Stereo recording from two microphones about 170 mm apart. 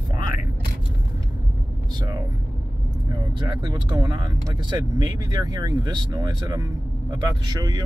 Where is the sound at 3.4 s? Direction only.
25° right (ahead or behind).